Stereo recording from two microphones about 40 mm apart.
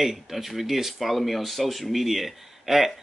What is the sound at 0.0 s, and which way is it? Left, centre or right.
Speech, centre.